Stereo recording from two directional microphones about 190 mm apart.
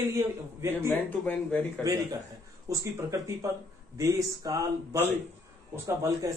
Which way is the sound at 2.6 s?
15° right (ahead or behind).